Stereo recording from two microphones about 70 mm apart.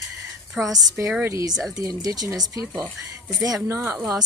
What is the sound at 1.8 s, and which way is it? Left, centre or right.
Speech, right.